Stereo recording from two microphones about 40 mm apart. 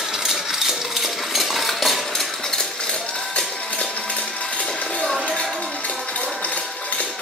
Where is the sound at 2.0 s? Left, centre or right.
Centre; by 4.8 s left.